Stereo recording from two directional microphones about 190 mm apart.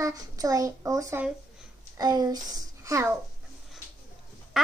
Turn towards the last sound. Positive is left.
turn(degrees=0)  # may be behind; listen again after turning